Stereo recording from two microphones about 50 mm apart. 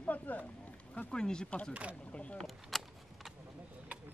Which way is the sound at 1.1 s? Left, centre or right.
Centre.